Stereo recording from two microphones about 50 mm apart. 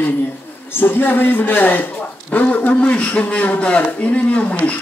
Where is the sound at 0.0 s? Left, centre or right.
Left.